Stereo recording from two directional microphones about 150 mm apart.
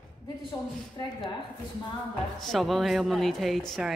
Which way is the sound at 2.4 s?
Centre (ahead or behind).